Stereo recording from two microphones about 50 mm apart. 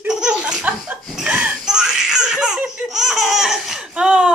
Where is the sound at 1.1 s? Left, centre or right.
Centre.